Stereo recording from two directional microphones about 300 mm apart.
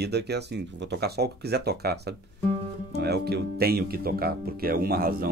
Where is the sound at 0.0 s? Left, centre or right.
Right.